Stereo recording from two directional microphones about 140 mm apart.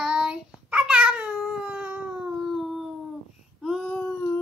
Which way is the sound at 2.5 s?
Centre (ahead or behind).